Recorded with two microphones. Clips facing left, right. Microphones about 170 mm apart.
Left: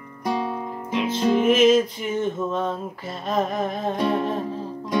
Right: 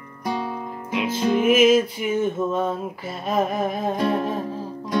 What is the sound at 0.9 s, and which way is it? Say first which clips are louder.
Music: left 1 dB; 5° right (ahead or behind).